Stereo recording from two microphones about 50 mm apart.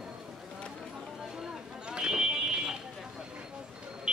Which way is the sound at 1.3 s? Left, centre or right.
Centre.